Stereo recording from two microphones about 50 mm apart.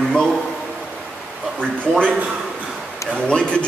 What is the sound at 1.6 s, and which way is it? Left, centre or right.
Speech, centre.